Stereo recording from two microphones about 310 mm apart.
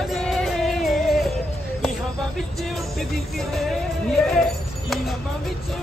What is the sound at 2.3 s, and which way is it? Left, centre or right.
Music, centre.